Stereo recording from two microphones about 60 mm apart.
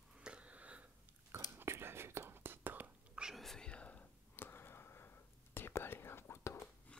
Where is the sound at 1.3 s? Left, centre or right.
Right.